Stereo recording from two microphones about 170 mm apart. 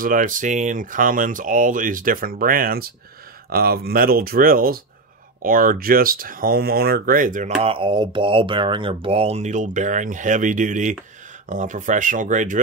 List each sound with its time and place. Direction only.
0.0 s speech: 50° right (ahead or behind)
7.6 s speech: 30° right (ahead or behind); by 12.5 s 50° right (ahead or behind)